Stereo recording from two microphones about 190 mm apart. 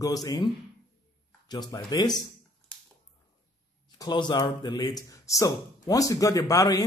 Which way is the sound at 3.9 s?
20° left (ahead or behind).